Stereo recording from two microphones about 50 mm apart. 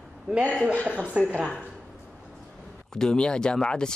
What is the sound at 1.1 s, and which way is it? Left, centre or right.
Speech, right.